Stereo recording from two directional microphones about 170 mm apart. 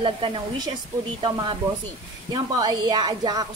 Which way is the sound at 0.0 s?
30° right (ahead or behind).